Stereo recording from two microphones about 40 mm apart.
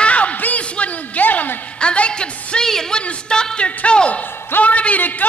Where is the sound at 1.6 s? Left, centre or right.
Left.